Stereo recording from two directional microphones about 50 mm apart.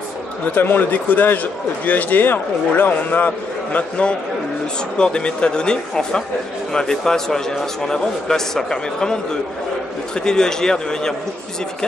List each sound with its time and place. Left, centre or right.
0.6 s a man's voice: left
3.7 s a man's voice: left